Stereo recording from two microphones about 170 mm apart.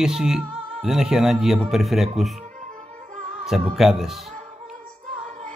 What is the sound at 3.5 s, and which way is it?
Speech, centre (ahead or behind).